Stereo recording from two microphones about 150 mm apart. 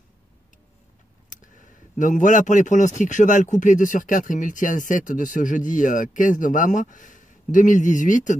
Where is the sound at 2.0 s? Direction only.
55° left (ahead or behind).